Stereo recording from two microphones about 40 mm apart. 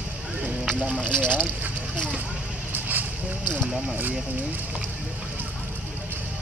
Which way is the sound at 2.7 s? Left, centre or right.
Right.